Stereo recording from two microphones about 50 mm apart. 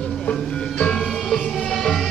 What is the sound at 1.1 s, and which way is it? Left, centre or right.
Music, centre.